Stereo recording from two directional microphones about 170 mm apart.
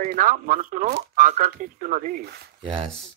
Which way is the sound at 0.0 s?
50° right (ahead or behind).